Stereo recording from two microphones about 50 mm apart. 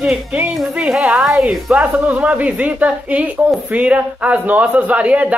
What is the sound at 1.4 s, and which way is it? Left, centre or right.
A man's voice, right.